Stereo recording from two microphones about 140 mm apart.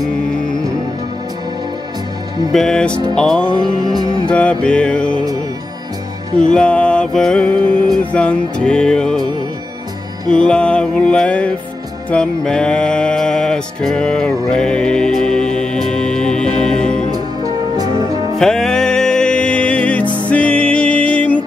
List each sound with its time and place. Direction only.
2.5 s music: 5° left (ahead or behind)
4.3 s mantra: 10° left (ahead or behind)
6.5 s mantra: 10° left (ahead or behind)
8.0 s music: 10° left (ahead or behind)
10.3 s mantra: 5° left (ahead or behind)
12.1 s music: 5° left (ahead or behind)
17.1 s music: 30° right (ahead or behind)
18.4 s music: 5° left (ahead or behind)